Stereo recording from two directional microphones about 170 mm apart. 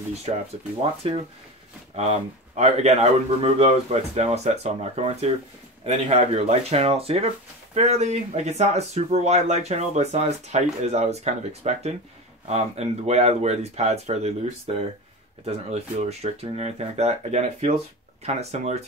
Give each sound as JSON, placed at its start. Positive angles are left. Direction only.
{"t": 1.0, "sound": "speech", "side_deg": -35}